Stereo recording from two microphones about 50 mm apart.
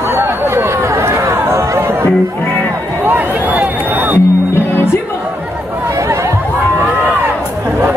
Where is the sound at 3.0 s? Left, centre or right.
Right.